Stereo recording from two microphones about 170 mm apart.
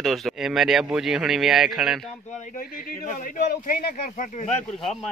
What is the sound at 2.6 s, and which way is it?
A man's voice, 50° left (ahead or behind).